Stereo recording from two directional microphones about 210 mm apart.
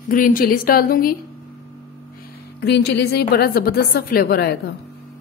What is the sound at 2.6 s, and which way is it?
A woman's voice, 55° left (ahead or behind).